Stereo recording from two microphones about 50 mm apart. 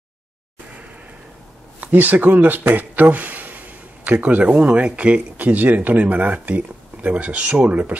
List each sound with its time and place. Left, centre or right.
1.8 s speech: right